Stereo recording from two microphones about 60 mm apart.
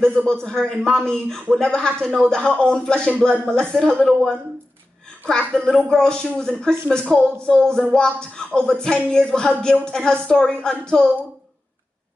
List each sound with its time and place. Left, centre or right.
0.0 s a man's voice: centre